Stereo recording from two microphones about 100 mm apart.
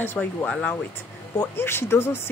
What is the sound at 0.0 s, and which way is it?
Speech, 20° left (ahead or behind).